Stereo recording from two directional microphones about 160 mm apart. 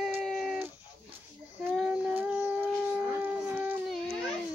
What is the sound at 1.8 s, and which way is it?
Child singing, centre (ahead or behind).